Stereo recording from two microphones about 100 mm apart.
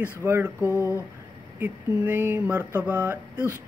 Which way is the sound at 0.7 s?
30° left (ahead or behind).